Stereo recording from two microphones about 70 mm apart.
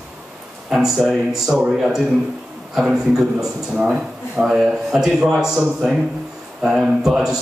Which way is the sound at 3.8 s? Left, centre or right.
Centre.